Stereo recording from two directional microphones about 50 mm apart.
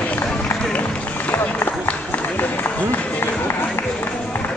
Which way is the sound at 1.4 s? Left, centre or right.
Left.